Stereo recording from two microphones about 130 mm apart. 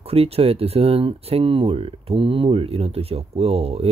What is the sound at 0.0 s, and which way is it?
Speech, 50° right (ahead or behind).